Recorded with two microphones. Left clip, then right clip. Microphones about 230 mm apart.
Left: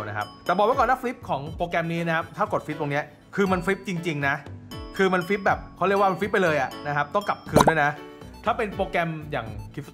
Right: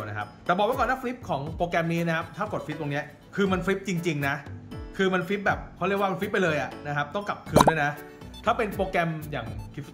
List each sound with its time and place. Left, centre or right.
0.0 s speech: centre